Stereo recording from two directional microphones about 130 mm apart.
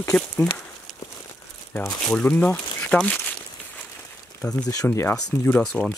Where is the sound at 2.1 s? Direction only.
10° left (ahead or behind).